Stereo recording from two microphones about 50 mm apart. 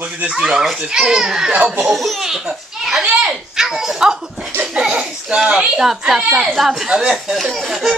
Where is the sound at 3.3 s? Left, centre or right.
Centre.